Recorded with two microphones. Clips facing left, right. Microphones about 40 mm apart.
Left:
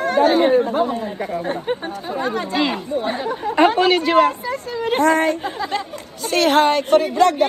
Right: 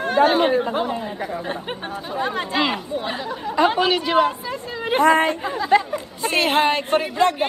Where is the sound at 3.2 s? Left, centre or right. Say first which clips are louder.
Left 4 dB; left.